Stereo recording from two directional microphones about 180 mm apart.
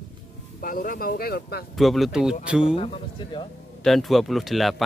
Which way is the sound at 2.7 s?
30° left (ahead or behind).